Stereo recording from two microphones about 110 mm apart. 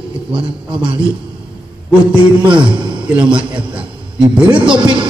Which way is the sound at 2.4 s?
45° right (ahead or behind).